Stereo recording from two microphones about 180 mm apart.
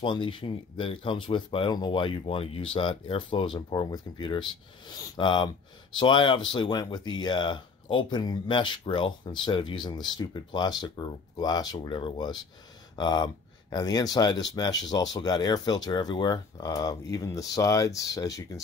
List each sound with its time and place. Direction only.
0.0 s speech: 25° left (ahead or behind)